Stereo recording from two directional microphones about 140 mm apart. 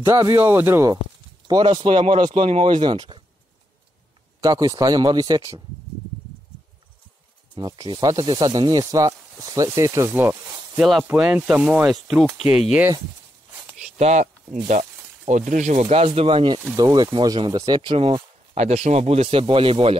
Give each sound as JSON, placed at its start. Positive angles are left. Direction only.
{"t": 0.0, "sound": "speech", "side_deg": -20}
{"t": 1.5, "sound": "speech", "side_deg": -35}
{"t": 4.4, "sound": "speech", "side_deg": -25}
{"t": 7.5, "sound": "speech", "side_deg": -35}
{"t": 10.8, "sound": "speech", "side_deg": 0}
{"t": 11.1, "sound": "speech", "side_deg": -10}
{"t": 13.7, "sound": "a sound", "side_deg": -55}
{"t": 15.2, "sound": "speech", "side_deg": -60}
{"t": 15.8, "sound": "speech", "side_deg": -40}
{"t": 18.5, "sound": "a man's voice", "side_deg": -50}